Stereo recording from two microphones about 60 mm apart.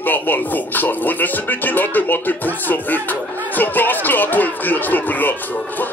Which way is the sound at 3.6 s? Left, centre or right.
Left.